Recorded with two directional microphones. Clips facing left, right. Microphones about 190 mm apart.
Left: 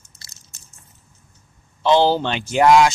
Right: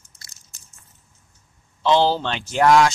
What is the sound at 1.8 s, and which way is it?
Speech, 15° left (ahead or behind).